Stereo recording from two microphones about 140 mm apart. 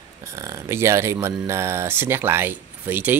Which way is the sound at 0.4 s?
20° right (ahead or behind).